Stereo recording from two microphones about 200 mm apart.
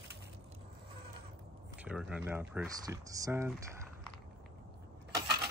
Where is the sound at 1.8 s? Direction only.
5° right (ahead or behind).